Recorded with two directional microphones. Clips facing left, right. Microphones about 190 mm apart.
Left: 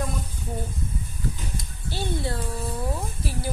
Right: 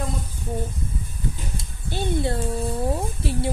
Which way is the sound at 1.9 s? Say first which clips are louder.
Right 4 dB; 20° right (ahead or behind).